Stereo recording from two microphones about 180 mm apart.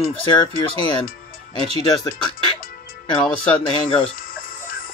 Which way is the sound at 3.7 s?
30° left (ahead or behind).